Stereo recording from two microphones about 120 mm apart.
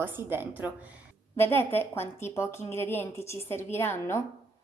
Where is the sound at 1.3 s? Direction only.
20° left (ahead or behind).